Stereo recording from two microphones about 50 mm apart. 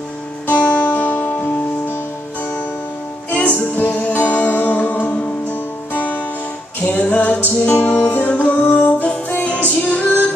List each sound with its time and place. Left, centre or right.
0.5 s music: left
3.3 s music: left
6.9 s music: left